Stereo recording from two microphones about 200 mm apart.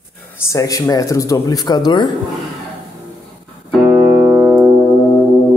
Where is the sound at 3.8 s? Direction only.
10° right (ahead or behind).